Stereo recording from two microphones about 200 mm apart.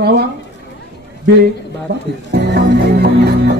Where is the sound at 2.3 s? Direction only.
55° right (ahead or behind).